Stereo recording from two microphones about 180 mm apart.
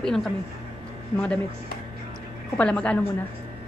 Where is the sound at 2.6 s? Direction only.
5° left (ahead or behind).